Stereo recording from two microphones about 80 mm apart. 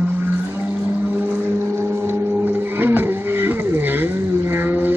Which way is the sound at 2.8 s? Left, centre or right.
Right.